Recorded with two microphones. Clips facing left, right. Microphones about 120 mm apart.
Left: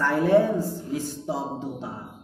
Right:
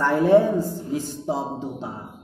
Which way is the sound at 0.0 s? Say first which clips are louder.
Right 3 dB; 20° right (ahead or behind).